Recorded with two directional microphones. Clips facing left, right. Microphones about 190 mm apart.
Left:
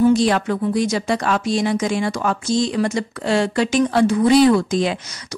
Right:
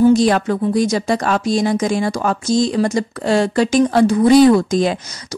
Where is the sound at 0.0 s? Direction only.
40° right (ahead or behind).